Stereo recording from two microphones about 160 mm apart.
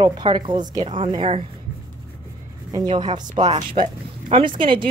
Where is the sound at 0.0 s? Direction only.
30° right (ahead or behind).